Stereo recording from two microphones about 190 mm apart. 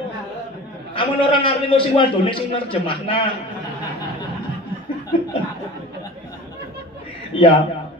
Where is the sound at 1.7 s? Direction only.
30° left (ahead or behind).